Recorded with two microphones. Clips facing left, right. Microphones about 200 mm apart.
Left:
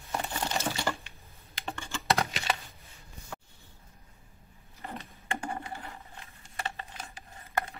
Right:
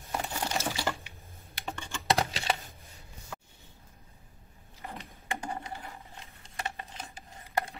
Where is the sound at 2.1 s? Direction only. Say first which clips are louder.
Right 1 dB; 30° right (ahead or behind).